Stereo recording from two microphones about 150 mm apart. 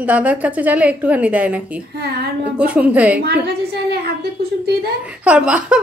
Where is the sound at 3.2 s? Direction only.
90° right.